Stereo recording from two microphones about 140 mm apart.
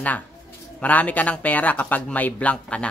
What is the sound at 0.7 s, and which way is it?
A child's voice, 10° left (ahead or behind).